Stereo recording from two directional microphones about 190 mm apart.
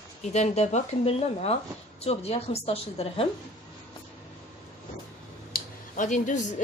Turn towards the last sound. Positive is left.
turn(degrees=40)  # may be behind; listen again after turning